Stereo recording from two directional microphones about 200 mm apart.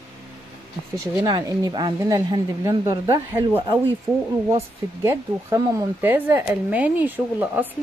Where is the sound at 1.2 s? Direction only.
20° right (ahead or behind).